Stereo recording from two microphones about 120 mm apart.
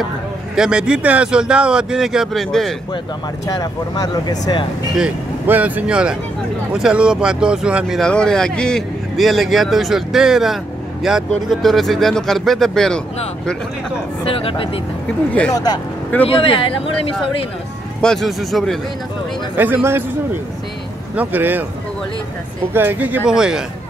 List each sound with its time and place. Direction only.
0.6 s speech: 10° right (ahead or behind)
3.4 s speech: 35° left (ahead or behind)
5.5 s speech: 15° right (ahead or behind)
8.0 s a man's voice: 5° left (ahead or behind)
14.2 s speech: 50° left (ahead or behind)
15.5 s speech: 35° left (ahead or behind)
16.3 s speech: 50° left (ahead or behind)
18.0 s a man's voice: centre (ahead or behind)
19.5 s speech: 15° right (ahead or behind)
21.2 s speech: 15° right (ahead or behind)
22.7 s speech: 15° right (ahead or behind)